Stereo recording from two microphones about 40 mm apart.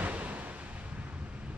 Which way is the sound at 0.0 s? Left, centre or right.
Right.